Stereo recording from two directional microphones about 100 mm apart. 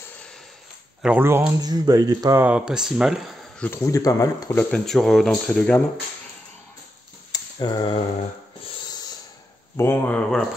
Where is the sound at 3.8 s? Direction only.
35° left (ahead or behind).